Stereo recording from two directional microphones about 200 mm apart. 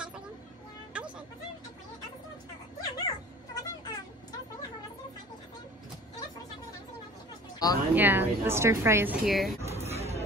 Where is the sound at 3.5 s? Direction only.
20° left (ahead or behind).